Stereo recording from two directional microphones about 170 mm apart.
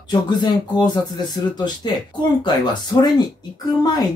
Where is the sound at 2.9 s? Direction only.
25° left (ahead or behind).